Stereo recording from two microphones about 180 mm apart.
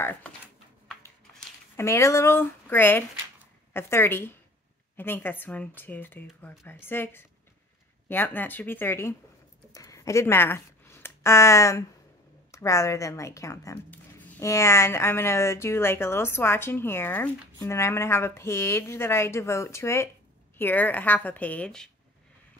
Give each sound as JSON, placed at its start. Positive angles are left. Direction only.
{"t": 0.0, "sound": "a woman's voice", "side_deg": 10}
{"t": 1.8, "sound": "a woman's voice", "side_deg": 15}
{"t": 9.7, "sound": "a sound", "side_deg": 20}
{"t": 12.4, "sound": "a woman's voice", "side_deg": 15}